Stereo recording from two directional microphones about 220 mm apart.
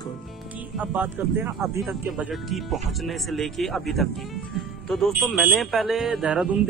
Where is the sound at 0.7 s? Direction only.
5° right (ahead or behind).